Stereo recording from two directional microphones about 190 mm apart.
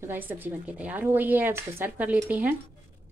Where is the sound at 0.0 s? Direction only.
10° right (ahead or behind).